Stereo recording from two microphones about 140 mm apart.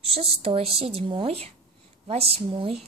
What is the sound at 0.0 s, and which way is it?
A woman's voice, 45° right (ahead or behind).